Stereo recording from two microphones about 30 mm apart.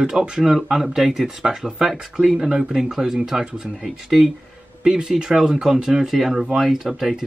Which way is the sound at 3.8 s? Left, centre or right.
Centre.